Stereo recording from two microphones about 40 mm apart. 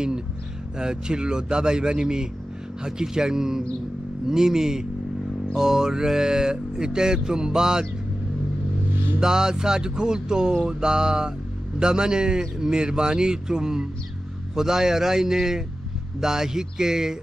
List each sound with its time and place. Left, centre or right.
0.7 s music: centre
2.8 s mantra: centre
9.2 s music: centre
11.8 s mantra: centre